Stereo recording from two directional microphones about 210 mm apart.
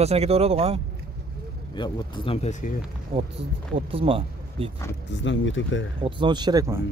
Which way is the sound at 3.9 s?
25° right (ahead or behind).